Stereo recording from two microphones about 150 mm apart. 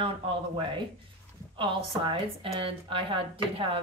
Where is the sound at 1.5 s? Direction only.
35° right (ahead or behind).